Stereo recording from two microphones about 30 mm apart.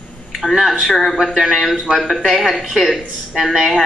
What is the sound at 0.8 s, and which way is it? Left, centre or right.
Speech, centre.